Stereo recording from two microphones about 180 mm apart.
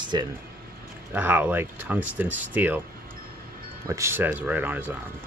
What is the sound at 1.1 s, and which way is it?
Speech, 10° right (ahead or behind).